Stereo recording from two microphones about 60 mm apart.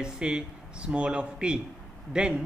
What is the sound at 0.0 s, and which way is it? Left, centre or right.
Speech, centre.